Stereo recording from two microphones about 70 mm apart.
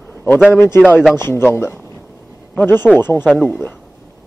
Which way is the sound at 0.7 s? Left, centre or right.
Left.